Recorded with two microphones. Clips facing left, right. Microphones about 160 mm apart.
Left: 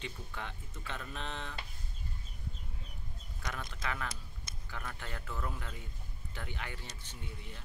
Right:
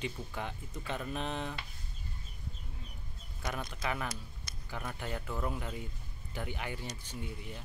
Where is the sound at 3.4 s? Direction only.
20° right (ahead or behind).